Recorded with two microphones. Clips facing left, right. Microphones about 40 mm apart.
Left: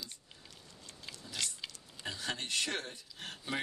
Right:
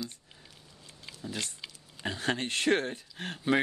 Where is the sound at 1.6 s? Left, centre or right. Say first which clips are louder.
Even; centre.